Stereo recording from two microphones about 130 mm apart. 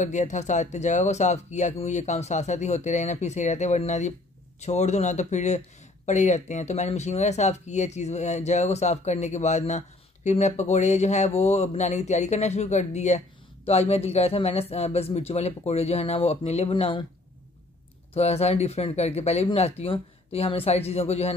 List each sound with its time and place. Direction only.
0.0 s a man's voice: 65° left (ahead or behind); by 17.0 s 45° left (ahead or behind)
18.1 s a man's voice: 55° left (ahead or behind)